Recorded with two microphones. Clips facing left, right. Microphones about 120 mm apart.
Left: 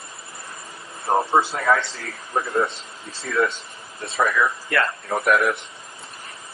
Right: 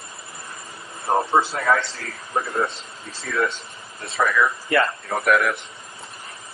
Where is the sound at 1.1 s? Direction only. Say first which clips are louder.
Even; 15° left (ahead or behind).